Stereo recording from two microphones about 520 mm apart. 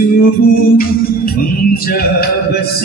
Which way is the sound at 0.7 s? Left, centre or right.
Centre.